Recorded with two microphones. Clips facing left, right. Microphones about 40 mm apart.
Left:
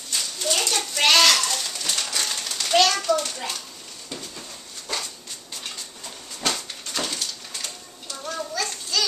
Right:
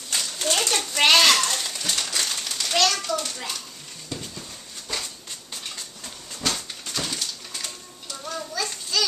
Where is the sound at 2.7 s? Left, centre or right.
Centre.